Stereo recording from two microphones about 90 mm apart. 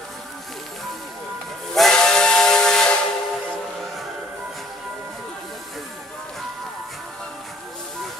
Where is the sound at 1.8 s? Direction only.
5° left (ahead or behind).